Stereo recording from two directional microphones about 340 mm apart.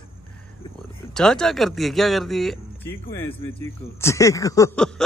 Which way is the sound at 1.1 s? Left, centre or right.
Centre.